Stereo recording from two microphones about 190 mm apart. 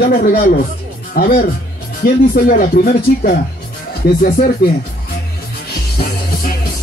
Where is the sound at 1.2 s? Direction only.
45° left (ahead or behind).